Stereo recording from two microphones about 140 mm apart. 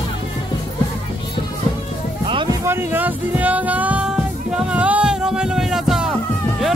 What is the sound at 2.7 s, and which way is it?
Music, 15° right (ahead or behind).